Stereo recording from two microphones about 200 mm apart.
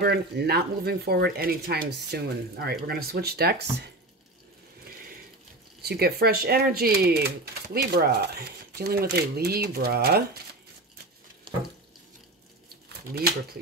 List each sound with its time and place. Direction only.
0.0 s speech: 55° right (ahead or behind)
5.8 s speech: 50° right (ahead or behind)
11.5 s water tap: 25° right (ahead or behind)